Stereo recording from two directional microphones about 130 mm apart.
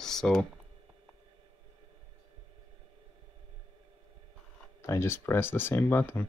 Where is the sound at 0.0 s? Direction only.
5° left (ahead or behind).